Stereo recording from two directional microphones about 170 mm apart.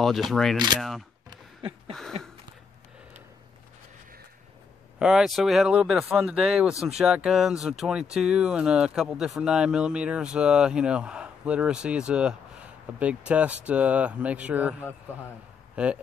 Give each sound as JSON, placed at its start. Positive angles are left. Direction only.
{"t": 0.0, "sound": "speech", "side_deg": 0}
{"t": 4.9, "sound": "speech", "side_deg": -5}